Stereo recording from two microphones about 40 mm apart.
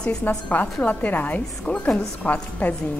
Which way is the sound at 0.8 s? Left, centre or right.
Left.